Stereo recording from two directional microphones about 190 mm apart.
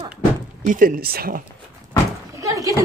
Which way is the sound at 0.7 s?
45° right (ahead or behind).